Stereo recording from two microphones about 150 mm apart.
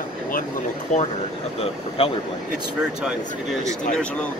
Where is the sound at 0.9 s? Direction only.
55° left (ahead or behind).